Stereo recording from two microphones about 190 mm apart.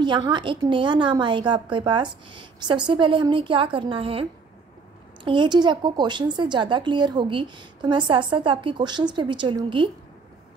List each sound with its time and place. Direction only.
0.0 s a woman's voice: 25° right (ahead or behind)